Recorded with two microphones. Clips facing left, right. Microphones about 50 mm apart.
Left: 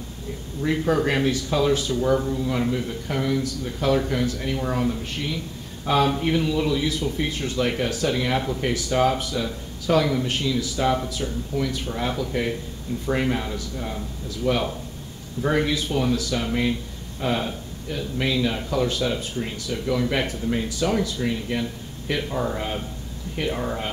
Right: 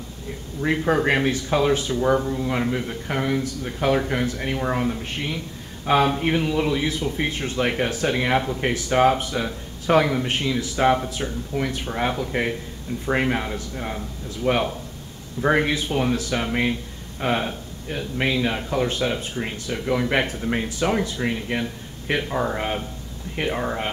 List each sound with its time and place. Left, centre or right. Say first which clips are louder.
0.6 s speech: right 1 dB; right